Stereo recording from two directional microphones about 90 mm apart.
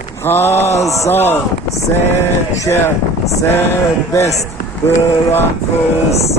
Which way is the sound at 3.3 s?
25° left (ahead or behind).